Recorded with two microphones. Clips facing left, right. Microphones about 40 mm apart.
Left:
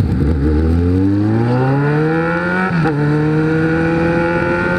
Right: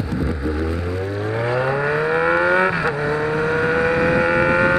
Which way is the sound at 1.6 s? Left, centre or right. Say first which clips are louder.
Left 4 dB; centre.